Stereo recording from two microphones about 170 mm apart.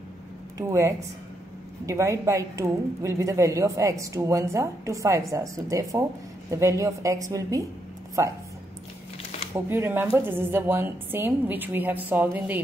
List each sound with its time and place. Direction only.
0.6 s a woman's voice: 20° right (ahead or behind)
9.5 s a woman's voice: 15° right (ahead or behind)